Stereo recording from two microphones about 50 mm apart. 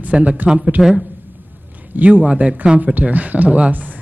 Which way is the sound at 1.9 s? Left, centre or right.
Right.